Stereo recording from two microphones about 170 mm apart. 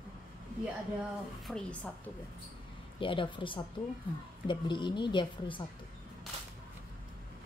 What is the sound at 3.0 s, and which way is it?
A woman's voice, 30° left (ahead or behind).